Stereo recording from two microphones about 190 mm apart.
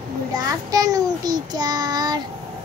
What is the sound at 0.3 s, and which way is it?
Child singing, 20° right (ahead or behind).